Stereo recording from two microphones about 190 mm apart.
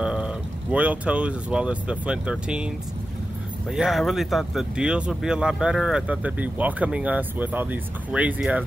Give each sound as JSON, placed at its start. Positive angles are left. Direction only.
{"t": 0.0, "sound": "speech", "side_deg": -5}
{"t": 3.7, "sound": "speech", "side_deg": 0}